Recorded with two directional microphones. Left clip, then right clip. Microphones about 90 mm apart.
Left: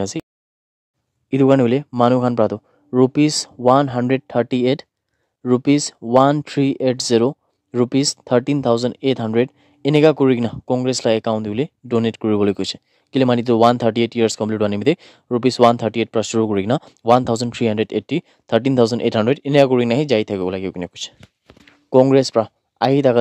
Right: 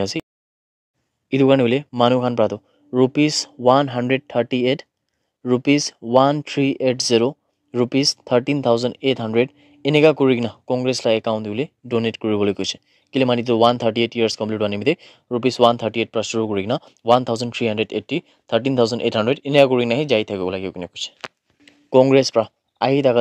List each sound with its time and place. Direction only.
0.2 s a sound: 30° left (ahead or behind)
1.3 s speech: 35° left (ahead or behind)
2.1 s speech: 50° left (ahead or behind)
3.6 s speech: 35° left (ahead or behind)
4.1 s speech: 45° left (ahead or behind)
11.3 s speech: 65° left (ahead or behind); by 19.5 s 90° left
19.5 s speech: 55° left (ahead or behind)
19.8 s speech: 70° left (ahead or behind); by 21.1 s 90° left
21.9 s speech: 45° left (ahead or behind)